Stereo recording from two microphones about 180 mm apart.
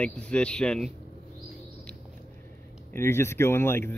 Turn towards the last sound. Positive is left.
turn(degrees=15)  # may be behind; listen again after turning